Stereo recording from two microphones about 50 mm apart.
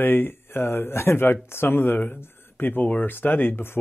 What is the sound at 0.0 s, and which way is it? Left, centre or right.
Speech, left.